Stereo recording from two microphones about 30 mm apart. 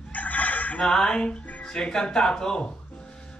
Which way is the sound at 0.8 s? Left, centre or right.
Left.